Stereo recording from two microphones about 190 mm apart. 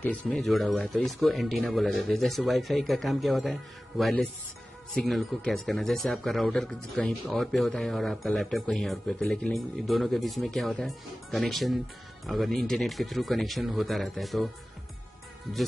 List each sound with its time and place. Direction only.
0.3 s speech: centre (ahead or behind)